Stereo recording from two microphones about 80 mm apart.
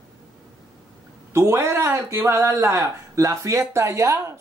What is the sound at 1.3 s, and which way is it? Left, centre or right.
Speech, right.